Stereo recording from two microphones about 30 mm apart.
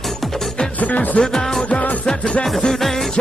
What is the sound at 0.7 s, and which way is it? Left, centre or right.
Music, left.